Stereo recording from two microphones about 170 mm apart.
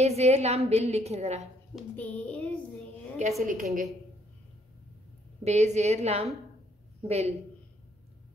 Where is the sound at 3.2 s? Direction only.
45° right (ahead or behind).